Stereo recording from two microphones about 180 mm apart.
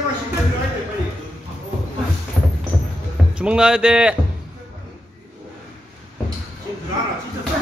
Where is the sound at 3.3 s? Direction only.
5° right (ahead or behind).